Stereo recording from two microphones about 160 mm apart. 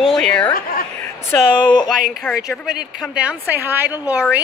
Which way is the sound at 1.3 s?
25° left (ahead or behind).